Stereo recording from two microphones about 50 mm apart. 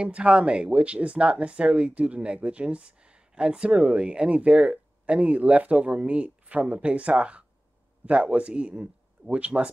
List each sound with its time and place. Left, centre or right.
0.0 s speech: right